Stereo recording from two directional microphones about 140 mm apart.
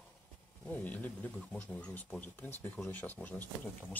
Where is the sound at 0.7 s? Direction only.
10° left (ahead or behind).